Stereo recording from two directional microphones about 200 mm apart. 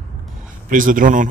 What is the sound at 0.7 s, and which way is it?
Speech, 40° right (ahead or behind).